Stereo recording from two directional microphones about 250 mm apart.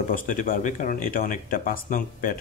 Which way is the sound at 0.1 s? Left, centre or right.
Left.